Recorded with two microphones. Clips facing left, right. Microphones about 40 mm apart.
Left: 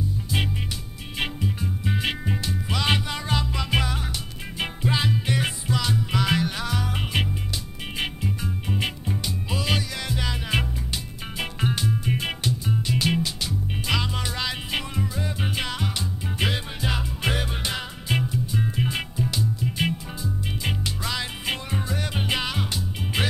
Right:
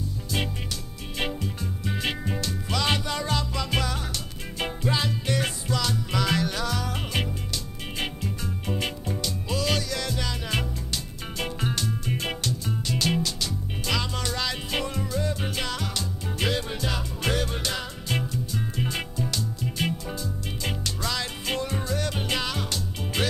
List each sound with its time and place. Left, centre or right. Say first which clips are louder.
1.1 s music: left 2 dB; centre